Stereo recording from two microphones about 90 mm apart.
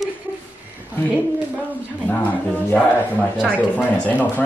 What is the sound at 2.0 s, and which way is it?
Speech, 15° left (ahead or behind).